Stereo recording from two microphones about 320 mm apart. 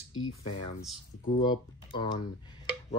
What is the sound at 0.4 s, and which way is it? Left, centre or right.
Speech, centre.